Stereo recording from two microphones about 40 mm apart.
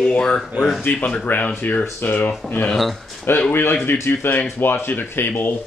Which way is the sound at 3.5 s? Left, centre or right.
Left.